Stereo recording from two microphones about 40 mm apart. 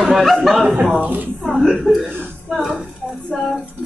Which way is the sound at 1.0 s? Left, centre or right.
Right.